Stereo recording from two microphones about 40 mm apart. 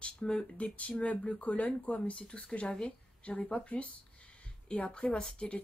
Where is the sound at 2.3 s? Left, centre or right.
Left.